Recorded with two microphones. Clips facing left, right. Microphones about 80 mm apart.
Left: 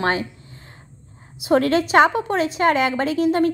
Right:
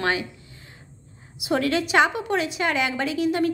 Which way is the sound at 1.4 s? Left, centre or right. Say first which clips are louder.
Left 5 dB; left.